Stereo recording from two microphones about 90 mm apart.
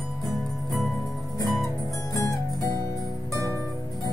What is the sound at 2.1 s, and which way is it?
Music, 40° left (ahead or behind).